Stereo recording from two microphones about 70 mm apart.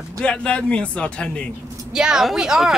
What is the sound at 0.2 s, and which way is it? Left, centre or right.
A man's voice, centre.